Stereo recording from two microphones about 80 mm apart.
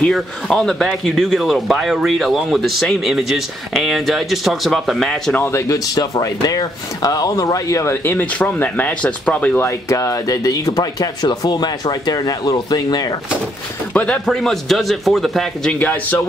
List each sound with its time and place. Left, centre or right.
0.0 s speech: centre
5.3 s speech: left
5.9 s speech: left; by 9.6 s centre
9.6 s speech: left
13.9 s speech: centre
15.8 s speech: left